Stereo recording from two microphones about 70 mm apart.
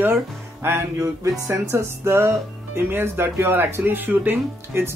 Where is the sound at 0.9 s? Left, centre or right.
Right.